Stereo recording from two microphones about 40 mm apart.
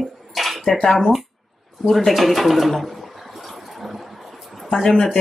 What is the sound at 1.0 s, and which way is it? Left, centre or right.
Speech, centre.